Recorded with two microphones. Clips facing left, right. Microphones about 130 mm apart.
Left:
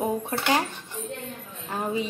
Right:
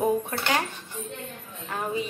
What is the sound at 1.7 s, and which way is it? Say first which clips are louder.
Speech: left 1 dB; 25° left (ahead or behind).